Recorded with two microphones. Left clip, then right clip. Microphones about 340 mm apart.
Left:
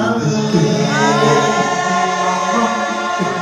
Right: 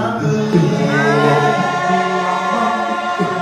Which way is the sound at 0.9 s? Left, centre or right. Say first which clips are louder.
Even; centre.